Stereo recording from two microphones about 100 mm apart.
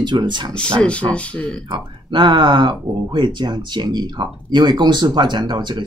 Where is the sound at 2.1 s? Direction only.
50° right (ahead or behind).